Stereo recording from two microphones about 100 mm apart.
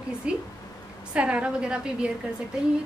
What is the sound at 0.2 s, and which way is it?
A woman's voice, 10° right (ahead or behind).